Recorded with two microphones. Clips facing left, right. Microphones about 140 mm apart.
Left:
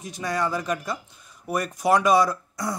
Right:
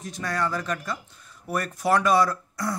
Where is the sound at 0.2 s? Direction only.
20° left (ahead or behind).